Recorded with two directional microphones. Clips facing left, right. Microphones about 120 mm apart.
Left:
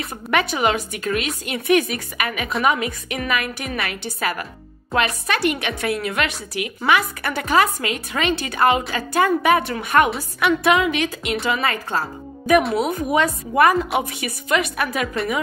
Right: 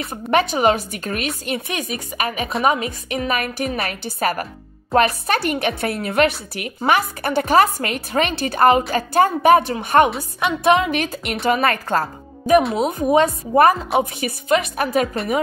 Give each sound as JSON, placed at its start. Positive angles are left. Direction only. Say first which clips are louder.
{"t": 0.1, "sound": "a woman's voice", "louder": "right 4 dB", "side_deg": -35}
{"t": 12.9, "sound": "a woman's voice", "louder": "right 4 dB", "side_deg": -30}